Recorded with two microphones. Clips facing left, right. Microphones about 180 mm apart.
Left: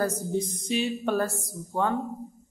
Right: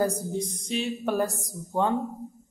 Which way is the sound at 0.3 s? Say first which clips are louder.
Left 2 dB; 5° left (ahead or behind).